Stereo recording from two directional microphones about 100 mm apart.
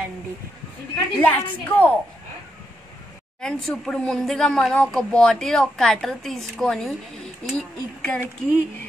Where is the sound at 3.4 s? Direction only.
5° left (ahead or behind).